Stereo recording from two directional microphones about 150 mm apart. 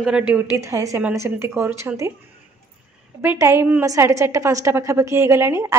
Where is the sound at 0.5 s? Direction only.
20° right (ahead or behind).